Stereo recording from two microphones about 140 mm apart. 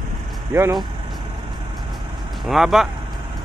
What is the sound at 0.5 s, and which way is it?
Speech, 15° right (ahead or behind).